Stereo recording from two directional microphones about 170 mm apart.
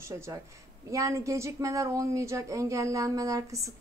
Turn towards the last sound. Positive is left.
turn(degrees=-20)  # may be behind; listen again after turning